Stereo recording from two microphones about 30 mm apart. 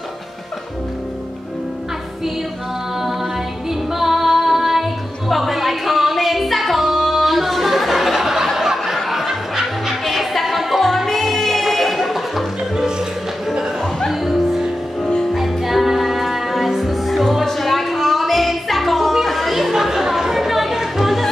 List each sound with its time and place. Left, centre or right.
3.9 s music: centre
8.5 s snicker: centre
10.0 s music: centre
14.2 s music: centre
19.2 s chatter: centre
19.7 s chatter: centre
21.0 s music: centre